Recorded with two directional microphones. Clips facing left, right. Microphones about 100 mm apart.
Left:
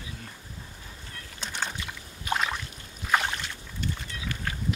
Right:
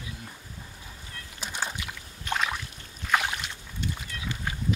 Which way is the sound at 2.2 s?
Centre (ahead or behind).